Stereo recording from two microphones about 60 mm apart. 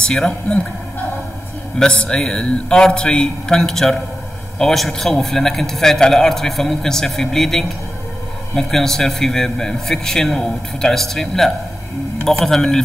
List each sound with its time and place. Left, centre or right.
0.0 s a man's voice: centre
1.8 s a man's voice: centre